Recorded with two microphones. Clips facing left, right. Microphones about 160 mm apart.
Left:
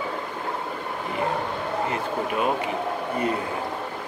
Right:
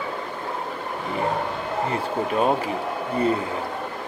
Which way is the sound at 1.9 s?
35° right (ahead or behind).